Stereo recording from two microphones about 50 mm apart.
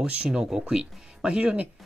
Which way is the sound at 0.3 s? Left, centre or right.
Centre.